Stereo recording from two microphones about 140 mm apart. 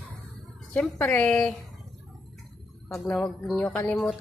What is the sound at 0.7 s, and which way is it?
Speech, 10° left (ahead or behind).